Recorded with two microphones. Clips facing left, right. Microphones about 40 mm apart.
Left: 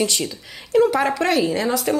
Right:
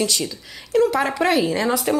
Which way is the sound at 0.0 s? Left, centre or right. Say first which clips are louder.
Left 1 dB; centre.